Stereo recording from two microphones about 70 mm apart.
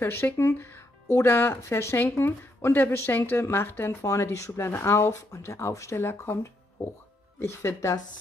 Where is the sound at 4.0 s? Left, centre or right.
Left.